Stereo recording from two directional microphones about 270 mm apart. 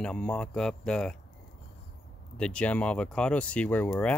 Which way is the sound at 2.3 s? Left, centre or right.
Centre.